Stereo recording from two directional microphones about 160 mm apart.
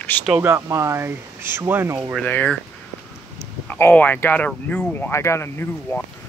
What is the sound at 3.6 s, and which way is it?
Speech, 15° left (ahead or behind).